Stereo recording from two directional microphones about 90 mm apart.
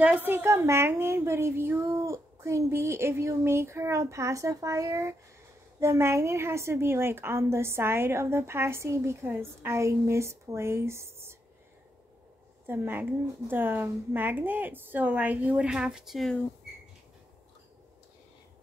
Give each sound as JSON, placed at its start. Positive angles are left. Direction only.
{"t": 0.0, "sound": "a woman's voice", "side_deg": -20}
{"t": 12.6, "sound": "a woman's voice", "side_deg": -20}